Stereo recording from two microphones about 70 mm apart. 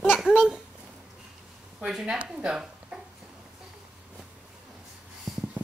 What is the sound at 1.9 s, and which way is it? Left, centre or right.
Speech, centre.